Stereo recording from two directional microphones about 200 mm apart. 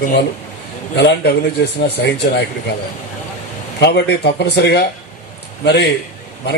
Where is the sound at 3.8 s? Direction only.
60° left (ahead or behind).